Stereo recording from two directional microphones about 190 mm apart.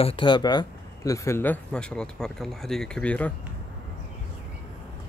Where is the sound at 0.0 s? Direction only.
25° left (ahead or behind); by 3.3 s 5° left (ahead or behind).